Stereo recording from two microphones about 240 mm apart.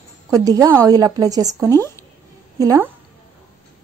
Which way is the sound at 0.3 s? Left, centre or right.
Centre.